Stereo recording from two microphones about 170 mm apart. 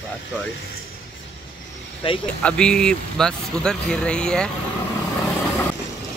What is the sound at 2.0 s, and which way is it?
Speech, 30° left (ahead or behind).